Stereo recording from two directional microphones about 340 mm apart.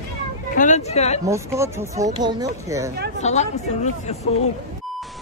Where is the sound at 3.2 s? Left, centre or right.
Centre.